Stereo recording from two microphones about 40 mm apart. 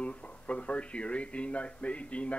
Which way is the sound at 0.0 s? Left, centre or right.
Left.